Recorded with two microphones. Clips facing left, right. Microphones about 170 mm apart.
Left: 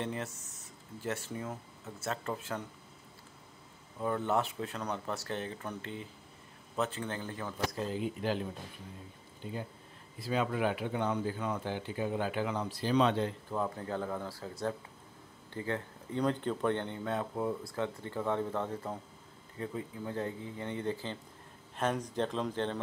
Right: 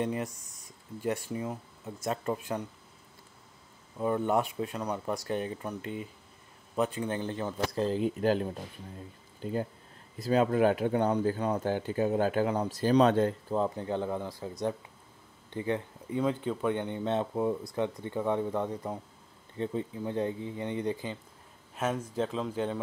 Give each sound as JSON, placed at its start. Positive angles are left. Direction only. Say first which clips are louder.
{"t": 0.0, "sound": "speech", "louder": "right 5 dB", "side_deg": -15}
{"t": 4.0, "sound": "speech", "louder": "right 4 dB", "side_deg": -15}
{"t": 13.5, "sound": "speech", "louder": "right 5 dB", "side_deg": -25}
{"t": 16.2, "sound": "speech", "louder": "right 2 dB", "side_deg": -5}
{"t": 19.6, "sound": "speech", "louder": "right 6 dB", "side_deg": -25}
{"t": 21.7, "sound": "speech", "louder": "right 2 dB", "side_deg": -5}